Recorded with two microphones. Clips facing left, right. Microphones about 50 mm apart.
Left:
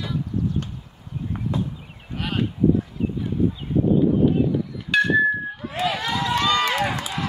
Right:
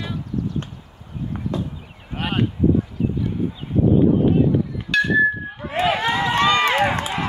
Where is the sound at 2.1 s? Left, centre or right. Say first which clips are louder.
Right 3 dB; right.